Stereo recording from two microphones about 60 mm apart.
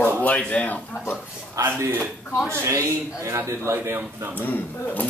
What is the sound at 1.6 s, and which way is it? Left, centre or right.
Speech, right.